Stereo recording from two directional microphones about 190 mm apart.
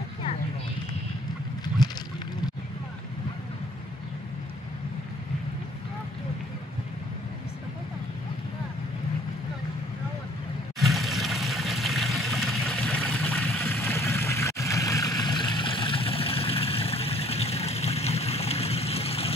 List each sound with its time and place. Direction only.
10.8 s trickle: centre (ahead or behind)
13.8 s vehicle: 15° left (ahead or behind); by 19.3 s 30° left (ahead or behind)